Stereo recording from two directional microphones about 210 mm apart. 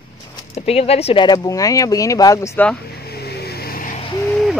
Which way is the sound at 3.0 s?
50° left (ahead or behind).